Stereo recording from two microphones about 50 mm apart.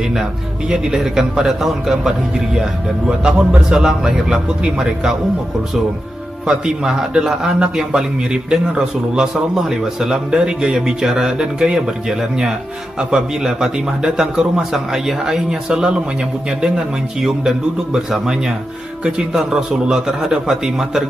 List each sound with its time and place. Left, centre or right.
0.7 s a man's voice: centre
6.4 s a man's voice: centre
17.2 s a man's voice: centre